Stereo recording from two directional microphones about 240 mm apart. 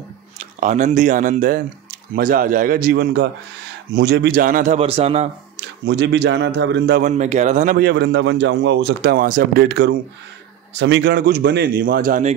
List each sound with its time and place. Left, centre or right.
0.6 s a man's voice: right
5.6 s a man's voice: right
7.0 s a man's voice: right
7.7 s a man's voice: right